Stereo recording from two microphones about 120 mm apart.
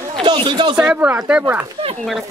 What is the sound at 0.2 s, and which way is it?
Speech, 40° right (ahead or behind).